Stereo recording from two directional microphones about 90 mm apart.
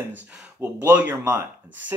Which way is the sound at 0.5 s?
20° right (ahead or behind).